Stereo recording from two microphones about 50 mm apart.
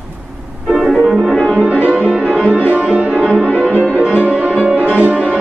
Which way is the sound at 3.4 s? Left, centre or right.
Right.